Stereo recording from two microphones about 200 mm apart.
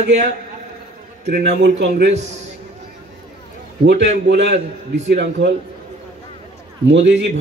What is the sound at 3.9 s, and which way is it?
A man's voice, 60° right (ahead or behind).